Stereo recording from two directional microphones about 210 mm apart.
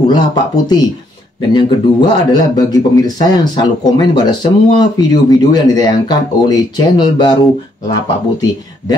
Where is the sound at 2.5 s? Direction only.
20° left (ahead or behind).